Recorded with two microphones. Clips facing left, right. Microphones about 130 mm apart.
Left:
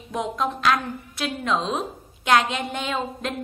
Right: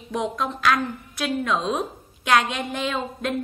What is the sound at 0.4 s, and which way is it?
A woman's voice, 25° left (ahead or behind).